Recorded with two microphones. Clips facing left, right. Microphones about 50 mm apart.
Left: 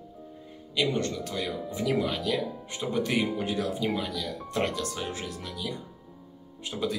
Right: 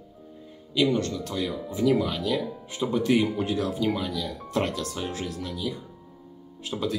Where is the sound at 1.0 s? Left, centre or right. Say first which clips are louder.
Right 2 dB; centre.